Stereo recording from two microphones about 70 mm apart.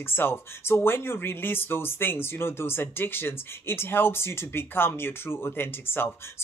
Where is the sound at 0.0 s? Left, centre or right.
Left.